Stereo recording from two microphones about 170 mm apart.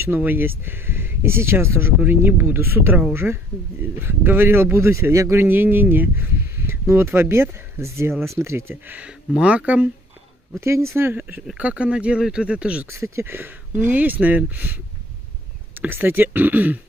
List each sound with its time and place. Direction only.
0.0 s speech: 10° right (ahead or behind)